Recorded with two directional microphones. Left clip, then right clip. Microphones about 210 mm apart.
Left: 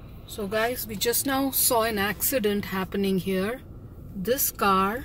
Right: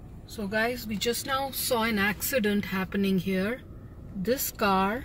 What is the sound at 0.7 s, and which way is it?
Speech, 20° left (ahead or behind).